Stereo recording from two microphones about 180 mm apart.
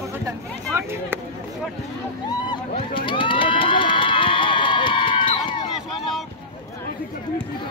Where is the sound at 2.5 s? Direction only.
30° left (ahead or behind).